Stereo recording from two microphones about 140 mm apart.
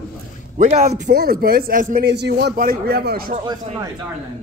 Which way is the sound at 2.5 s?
90° right.